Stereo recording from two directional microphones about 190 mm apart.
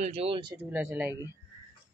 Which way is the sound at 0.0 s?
30° right (ahead or behind).